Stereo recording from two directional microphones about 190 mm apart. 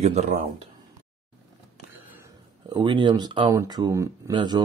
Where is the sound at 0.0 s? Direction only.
35° right (ahead or behind).